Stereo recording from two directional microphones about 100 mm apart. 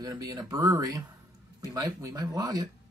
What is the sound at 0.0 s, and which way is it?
Speech, 40° right (ahead or behind).